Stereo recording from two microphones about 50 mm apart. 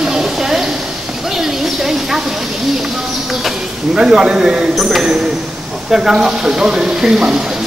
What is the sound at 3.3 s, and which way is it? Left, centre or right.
Speech, centre.